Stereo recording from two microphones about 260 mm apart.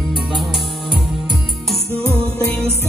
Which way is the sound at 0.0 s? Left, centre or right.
Centre.